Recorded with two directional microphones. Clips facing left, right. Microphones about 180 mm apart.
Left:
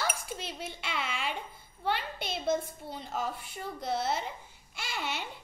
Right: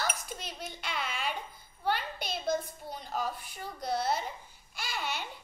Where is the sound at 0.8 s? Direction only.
25° left (ahead or behind).